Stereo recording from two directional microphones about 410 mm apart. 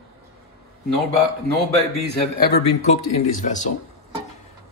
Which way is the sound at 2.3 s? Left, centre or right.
Left.